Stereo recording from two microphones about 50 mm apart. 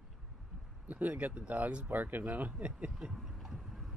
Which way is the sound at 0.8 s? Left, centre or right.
Right.